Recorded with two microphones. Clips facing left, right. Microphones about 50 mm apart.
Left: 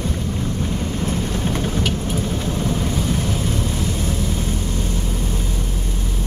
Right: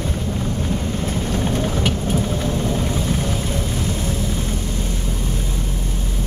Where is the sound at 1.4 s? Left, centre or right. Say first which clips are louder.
Right 1 dB; centre.